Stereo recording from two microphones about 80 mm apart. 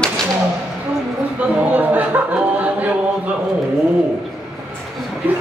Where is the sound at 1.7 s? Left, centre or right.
Right.